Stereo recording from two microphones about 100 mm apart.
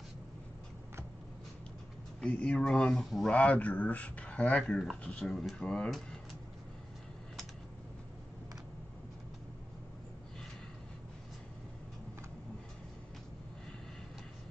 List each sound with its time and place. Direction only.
2.1 s speech: 10° left (ahead or behind)
3.3 s speech: 15° left (ahead or behind)